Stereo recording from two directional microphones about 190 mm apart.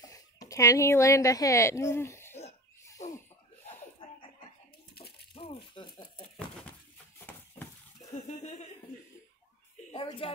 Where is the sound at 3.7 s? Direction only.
30° left (ahead or behind).